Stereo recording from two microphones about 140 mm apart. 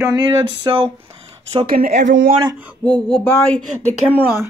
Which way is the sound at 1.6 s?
90° right.